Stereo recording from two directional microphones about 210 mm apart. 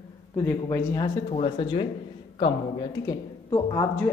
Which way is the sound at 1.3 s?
25° left (ahead or behind).